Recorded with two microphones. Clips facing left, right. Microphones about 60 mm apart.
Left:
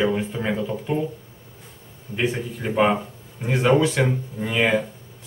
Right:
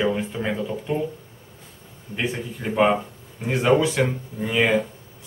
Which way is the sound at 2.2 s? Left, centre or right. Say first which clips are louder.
Left 3 dB; centre.